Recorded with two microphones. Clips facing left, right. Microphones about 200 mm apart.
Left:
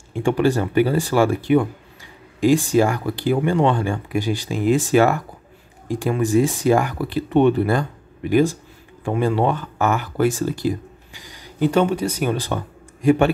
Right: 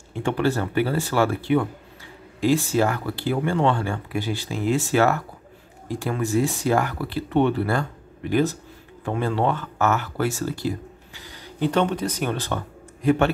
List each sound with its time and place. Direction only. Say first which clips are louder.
0.1 s speech: left 5 dB; 15° left (ahead or behind)